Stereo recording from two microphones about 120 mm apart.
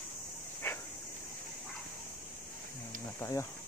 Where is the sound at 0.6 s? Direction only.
20° left (ahead or behind).